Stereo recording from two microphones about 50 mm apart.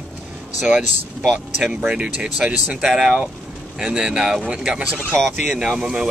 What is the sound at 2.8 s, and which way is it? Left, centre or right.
Speech, centre.